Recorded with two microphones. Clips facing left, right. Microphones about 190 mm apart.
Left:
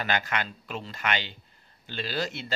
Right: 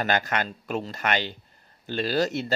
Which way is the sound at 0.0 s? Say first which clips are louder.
Right 4 dB; 45° right (ahead or behind).